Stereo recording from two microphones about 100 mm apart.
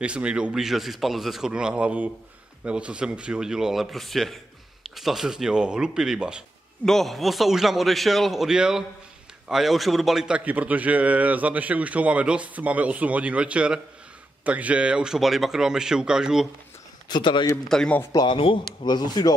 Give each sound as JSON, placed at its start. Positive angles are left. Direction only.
{"t": 0.0, "sound": "a man's voice", "side_deg": -10}
{"t": 6.9, "sound": "a man's voice", "side_deg": 0}
{"t": 17.1, "sound": "speech", "side_deg": 50}
{"t": 17.6, "sound": "a man's voice", "side_deg": 5}
{"t": 18.1, "sound": "speech", "side_deg": 55}